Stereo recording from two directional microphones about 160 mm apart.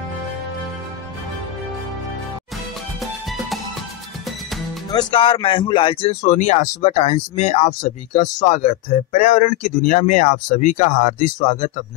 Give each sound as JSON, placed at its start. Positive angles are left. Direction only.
{"t": 3.0, "sound": "music", "side_deg": 0}
{"t": 4.9, "sound": "speech", "side_deg": 35}